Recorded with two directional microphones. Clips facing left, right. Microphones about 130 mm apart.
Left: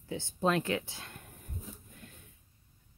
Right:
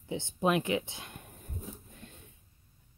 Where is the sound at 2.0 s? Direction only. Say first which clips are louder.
Right 1 dB; 25° right (ahead or behind).